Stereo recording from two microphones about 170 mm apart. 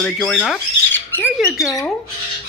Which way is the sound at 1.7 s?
20° left (ahead or behind).